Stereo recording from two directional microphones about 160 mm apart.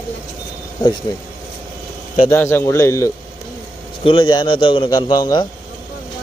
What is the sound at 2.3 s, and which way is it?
Speech, 15° left (ahead or behind).